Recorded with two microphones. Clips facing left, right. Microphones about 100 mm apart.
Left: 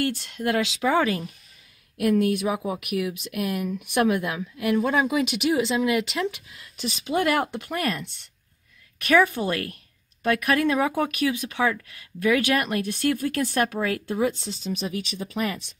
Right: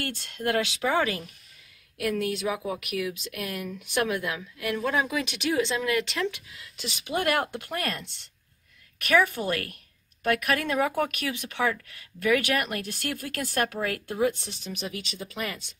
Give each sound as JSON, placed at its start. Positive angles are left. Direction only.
{"t": 0.0, "sound": "speech", "side_deg": 20}
{"t": 9.0, "sound": "speech", "side_deg": 20}